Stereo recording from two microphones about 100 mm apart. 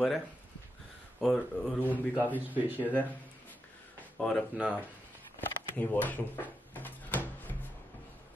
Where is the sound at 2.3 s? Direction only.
20° right (ahead or behind).